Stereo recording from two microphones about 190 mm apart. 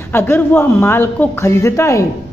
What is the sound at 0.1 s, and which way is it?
A woman's voice, 10° left (ahead or behind).